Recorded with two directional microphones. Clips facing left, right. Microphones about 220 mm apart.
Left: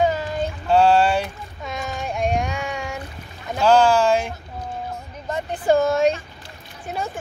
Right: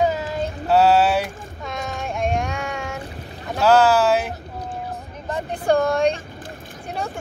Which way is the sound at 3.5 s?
5° right (ahead or behind).